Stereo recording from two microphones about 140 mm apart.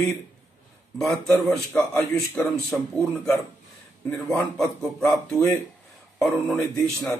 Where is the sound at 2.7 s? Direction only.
Centre (ahead or behind).